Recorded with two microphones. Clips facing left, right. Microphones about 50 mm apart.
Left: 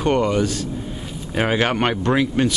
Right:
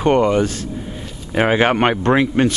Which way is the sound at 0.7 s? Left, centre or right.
Centre.